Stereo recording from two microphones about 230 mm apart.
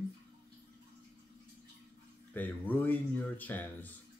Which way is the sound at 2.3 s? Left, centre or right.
Centre.